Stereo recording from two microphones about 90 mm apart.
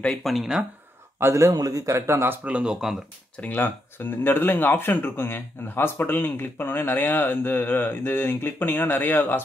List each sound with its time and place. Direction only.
0.0 s speech: 5° left (ahead or behind)
1.2 s speech: 35° right (ahead or behind); by 3.0 s 5° right (ahead or behind)
3.3 s speech: 20° left (ahead or behind)